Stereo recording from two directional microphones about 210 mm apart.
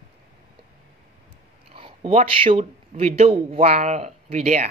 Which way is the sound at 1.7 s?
25° right (ahead or behind).